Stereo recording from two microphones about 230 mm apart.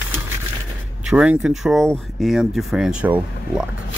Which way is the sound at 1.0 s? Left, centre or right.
Centre.